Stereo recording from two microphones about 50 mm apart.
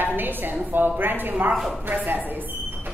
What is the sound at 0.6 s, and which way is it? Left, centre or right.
Speech, right.